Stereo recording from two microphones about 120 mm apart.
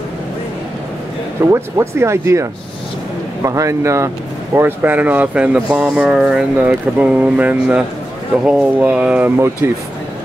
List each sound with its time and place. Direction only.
1.4 s speech: 25° right (ahead or behind)
3.4 s speech: 25° right (ahead or behind); by 9.3 s 10° right (ahead or behind)